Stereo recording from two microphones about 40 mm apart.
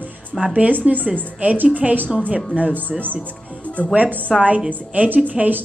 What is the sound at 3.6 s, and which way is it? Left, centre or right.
Music, left.